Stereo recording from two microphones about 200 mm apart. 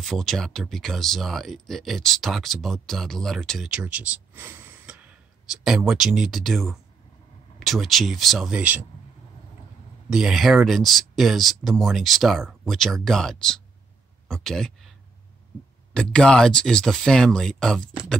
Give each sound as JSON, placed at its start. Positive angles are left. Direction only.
{"t": 0.0, "sound": "speech", "side_deg": 0}
{"t": 10.0, "sound": "speech", "side_deg": 0}
{"t": 15.9, "sound": "speech", "side_deg": 5}